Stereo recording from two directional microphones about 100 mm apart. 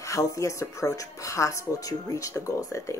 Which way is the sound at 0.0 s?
30° left (ahead or behind).